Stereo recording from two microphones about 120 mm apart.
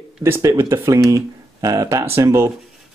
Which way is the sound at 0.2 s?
25° right (ahead or behind).